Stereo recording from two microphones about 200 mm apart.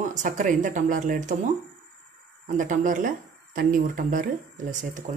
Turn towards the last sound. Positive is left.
turn(degrees=-40)  # may be behind; listen again after turning